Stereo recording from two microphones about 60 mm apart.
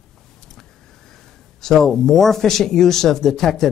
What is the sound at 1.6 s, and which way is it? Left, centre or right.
Speech, centre.